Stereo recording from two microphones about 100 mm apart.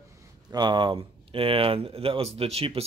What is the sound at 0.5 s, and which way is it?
Speech, 50° right (ahead or behind).